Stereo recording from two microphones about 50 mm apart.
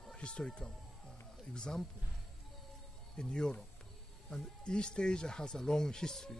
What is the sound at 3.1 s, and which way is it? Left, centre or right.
Speech, centre.